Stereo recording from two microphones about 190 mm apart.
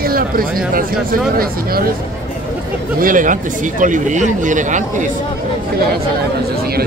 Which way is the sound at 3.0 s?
45° right (ahead or behind).